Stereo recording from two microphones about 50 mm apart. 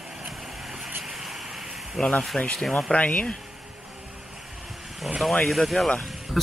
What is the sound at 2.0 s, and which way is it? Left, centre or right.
Speech, centre.